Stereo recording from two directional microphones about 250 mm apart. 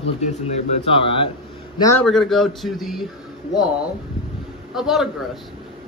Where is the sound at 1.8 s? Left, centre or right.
Centre.